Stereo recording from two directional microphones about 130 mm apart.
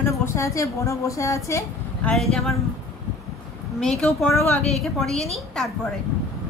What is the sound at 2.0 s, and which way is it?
Speech, centre (ahead or behind).